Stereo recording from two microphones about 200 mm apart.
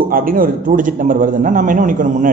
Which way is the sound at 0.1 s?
45° right (ahead or behind).